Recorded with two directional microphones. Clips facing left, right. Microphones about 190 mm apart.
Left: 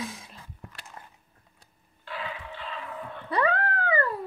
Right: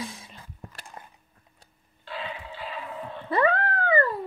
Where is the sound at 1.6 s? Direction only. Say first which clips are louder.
Even; 25° right (ahead or behind).